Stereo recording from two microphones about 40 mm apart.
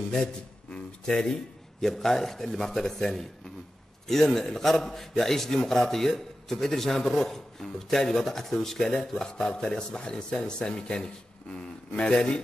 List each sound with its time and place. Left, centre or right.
0.2 s a man's voice: left